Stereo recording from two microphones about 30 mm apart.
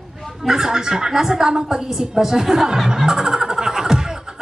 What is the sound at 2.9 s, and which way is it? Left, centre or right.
Vehicle, centre.